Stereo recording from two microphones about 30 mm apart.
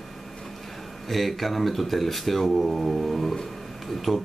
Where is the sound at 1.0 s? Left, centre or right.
Centre.